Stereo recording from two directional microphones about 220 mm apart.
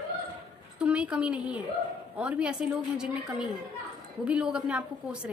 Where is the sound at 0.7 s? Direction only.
5° right (ahead or behind).